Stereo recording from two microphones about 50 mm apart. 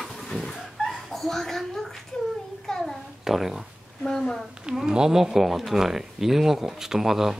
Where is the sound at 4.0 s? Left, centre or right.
Centre.